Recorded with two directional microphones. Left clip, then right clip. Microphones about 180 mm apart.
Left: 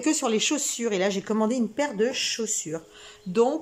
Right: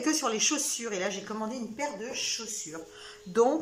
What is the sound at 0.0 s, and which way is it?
Speech, 20° left (ahead or behind).